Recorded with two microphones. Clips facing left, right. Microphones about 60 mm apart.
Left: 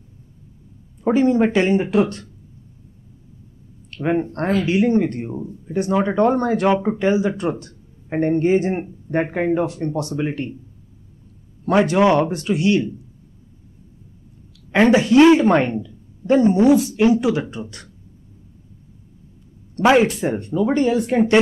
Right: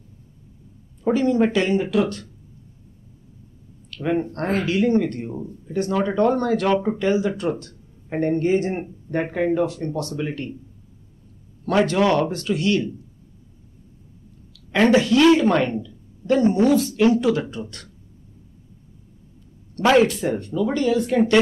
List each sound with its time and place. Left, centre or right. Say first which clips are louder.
1.0 s speech: left 3 dB; left
3.9 s speech: left 2 dB; left
11.6 s speech: left 3 dB; centre
14.7 s speech: left 2 dB; centre
19.8 s speech: left 2 dB; left